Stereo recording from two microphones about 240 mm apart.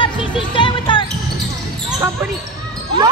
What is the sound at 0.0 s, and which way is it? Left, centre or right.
Music, centre.